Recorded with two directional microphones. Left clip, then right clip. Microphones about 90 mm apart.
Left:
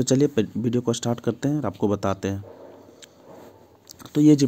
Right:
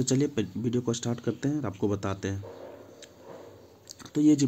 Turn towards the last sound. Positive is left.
turn(degrees=90)